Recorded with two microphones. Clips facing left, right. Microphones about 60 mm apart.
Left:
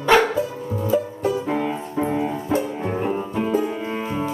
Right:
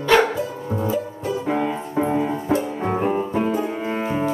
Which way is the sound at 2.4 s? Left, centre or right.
Right.